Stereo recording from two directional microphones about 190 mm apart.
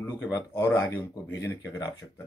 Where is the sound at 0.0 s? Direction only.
10° left (ahead or behind).